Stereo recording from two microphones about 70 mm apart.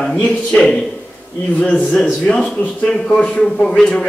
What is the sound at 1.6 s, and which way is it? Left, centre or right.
A man's voice, centre.